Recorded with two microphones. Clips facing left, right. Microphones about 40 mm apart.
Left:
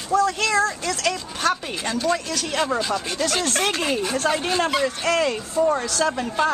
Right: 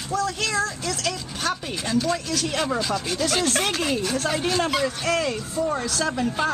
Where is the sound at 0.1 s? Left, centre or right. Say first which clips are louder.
Left 5 dB; centre.